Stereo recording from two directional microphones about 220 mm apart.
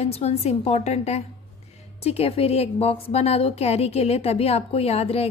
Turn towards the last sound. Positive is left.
turn(degrees=30)  # may be behind; listen again after turning